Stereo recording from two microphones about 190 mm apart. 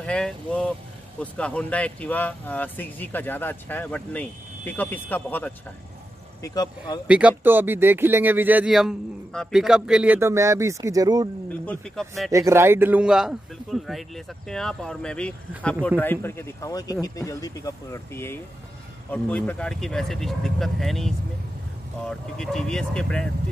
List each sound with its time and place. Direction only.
0.0 s a man's voice: 5° left (ahead or behind)
6.4 s speech: 20° left (ahead or behind)
7.1 s speech: 5° right (ahead or behind)
11.6 s a man's voice: 5° left (ahead or behind)
12.3 s a man's voice: 15° right (ahead or behind); by 21.1 s centre (ahead or behind)
22.4 s a man's voice: 5° left (ahead or behind)